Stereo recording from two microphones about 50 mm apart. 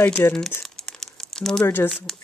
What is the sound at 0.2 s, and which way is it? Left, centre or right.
Speech, left.